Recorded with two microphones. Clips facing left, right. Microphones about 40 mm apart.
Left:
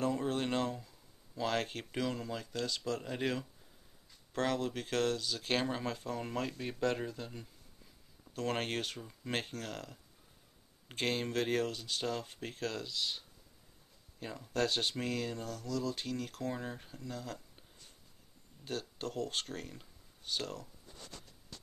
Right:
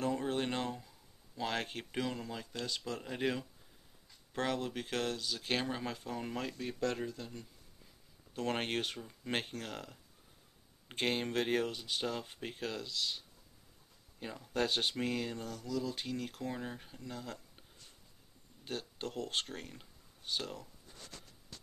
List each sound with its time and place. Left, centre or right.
0.0 s a sound: centre
1.4 s speech: centre
6.6 s speech: centre
8.4 s speech: centre
10.9 s speech: centre
12.7 s speech: centre
14.2 s speech: centre
16.9 s speech: centre
18.6 s speech: centre
19.4 s speech: centre